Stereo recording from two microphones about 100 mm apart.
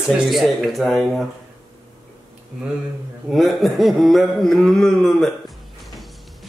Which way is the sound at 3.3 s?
Centre (ahead or behind).